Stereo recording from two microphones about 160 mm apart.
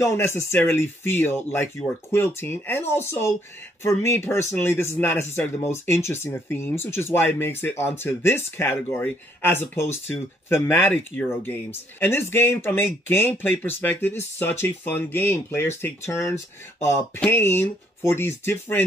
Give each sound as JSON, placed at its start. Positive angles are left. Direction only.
{"t": 0.0, "sound": "speech", "side_deg": 15}